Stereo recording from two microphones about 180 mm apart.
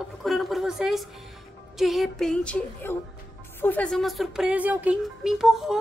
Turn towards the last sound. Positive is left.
turn(degrees=0)  # may be behind; listen again after turning